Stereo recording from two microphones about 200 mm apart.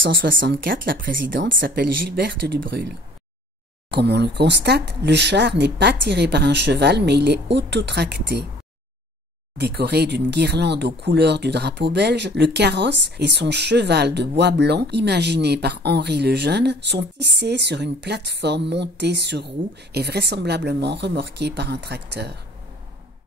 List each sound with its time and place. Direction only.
0.0 s speech: 45° right (ahead or behind)
1.0 s speech: 65° right (ahead or behind)
1.6 s speech: 50° right (ahead or behind)
3.9 s speech: 55° right (ahead or behind)
9.6 s speech: 55° right (ahead or behind)